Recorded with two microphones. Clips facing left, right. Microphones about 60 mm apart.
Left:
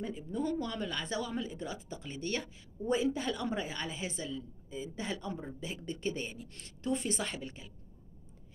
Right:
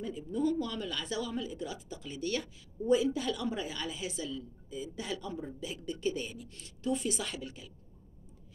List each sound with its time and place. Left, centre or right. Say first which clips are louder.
0.0 s a woman's voice: right 3 dB; left